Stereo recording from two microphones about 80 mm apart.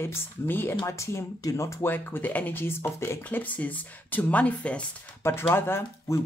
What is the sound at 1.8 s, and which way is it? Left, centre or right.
Speech, left.